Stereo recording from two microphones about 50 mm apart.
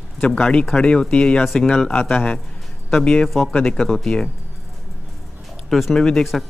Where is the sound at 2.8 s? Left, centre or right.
Centre.